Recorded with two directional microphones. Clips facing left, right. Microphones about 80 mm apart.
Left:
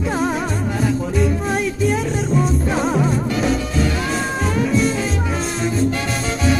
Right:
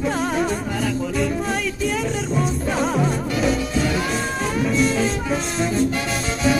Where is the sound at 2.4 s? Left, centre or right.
Centre.